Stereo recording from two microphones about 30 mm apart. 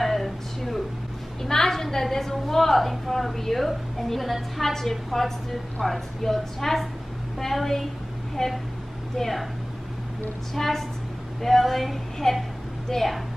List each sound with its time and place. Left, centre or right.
0.0 s a sound: centre
1.4 s a woman's voice: centre
10.5 s a woman's voice: centre
12.2 s a woman's voice: centre
12.9 s speech: centre